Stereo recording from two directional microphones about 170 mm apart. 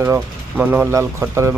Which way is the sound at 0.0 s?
15° right (ahead or behind).